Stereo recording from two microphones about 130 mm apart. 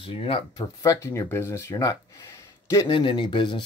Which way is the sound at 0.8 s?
20° left (ahead or behind).